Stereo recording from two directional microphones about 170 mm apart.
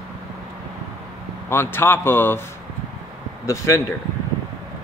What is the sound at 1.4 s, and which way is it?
Speech, 15° left (ahead or behind).